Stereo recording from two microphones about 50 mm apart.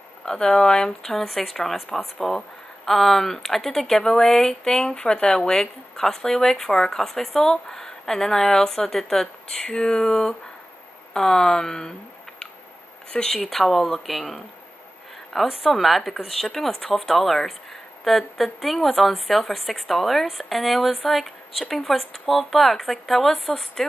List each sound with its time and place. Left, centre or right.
0.2 s speech: centre
13.1 s speech: centre
13.5 s a woman's voice: centre
15.4 s a woman's voice: centre